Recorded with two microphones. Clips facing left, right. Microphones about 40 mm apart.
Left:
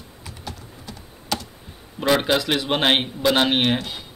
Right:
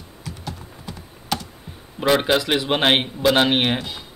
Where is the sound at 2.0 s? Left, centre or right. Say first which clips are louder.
Right 1 dB; centre.